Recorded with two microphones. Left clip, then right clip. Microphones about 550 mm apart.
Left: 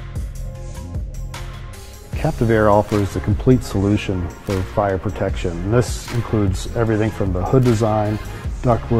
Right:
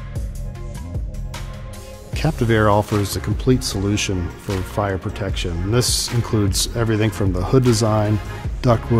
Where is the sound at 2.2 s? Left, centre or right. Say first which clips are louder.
Left 1 dB; centre.